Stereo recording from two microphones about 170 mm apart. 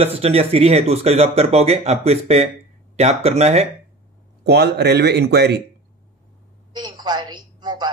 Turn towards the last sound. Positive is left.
turn(degrees=-25)  # may be behind; listen again after turning